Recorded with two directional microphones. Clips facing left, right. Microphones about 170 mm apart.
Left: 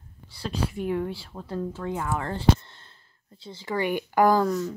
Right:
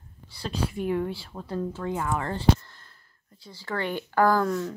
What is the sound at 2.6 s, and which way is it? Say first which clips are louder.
Speech: left 1 dB; 25° left (ahead or behind).